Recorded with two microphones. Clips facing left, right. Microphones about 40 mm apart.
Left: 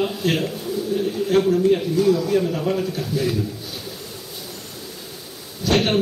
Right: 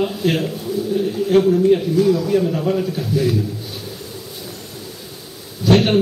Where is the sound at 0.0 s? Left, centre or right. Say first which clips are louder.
Right 2 dB; centre.